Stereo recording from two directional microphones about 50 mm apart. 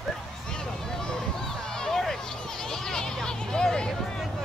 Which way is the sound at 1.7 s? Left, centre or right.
Centre.